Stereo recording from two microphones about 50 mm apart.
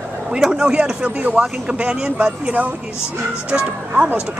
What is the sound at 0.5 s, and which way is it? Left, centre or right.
Speech, right.